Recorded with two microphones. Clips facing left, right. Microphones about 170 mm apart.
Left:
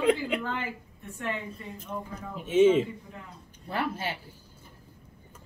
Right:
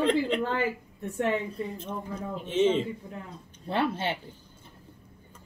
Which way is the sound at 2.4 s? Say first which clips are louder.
Left 4 dB; 10° left (ahead or behind).